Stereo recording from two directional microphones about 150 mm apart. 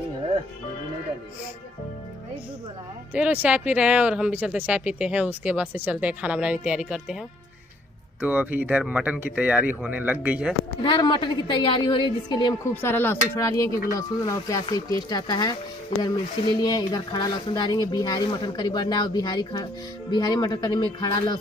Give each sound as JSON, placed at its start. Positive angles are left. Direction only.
{"t": 3.1, "sound": "speech", "side_deg": -10}
{"t": 8.2, "sound": "speech", "side_deg": -10}
{"t": 10.8, "sound": "a woman's voice", "side_deg": 30}
{"t": 12.6, "sound": "speech", "side_deg": 15}
{"t": 16.6, "sound": "speech", "side_deg": 25}